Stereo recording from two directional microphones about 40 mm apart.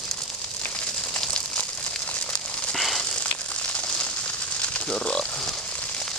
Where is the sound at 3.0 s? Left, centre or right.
Left.